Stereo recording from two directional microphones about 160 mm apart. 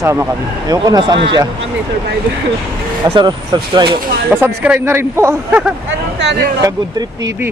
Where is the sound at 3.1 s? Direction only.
30° right (ahead or behind).